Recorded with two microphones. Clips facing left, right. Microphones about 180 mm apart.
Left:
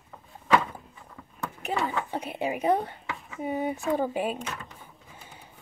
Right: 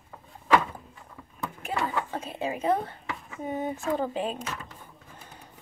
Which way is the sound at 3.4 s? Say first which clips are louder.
Left 2 dB; 10° left (ahead or behind).